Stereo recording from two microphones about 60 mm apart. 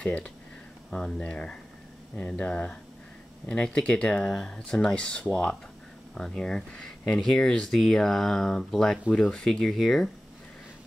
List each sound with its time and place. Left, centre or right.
0.0 s speech: centre